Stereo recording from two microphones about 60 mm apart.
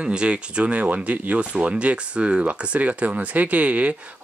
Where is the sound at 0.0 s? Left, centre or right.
Centre.